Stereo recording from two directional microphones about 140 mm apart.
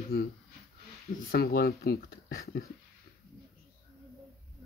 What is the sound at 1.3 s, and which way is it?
Speech, 90° left.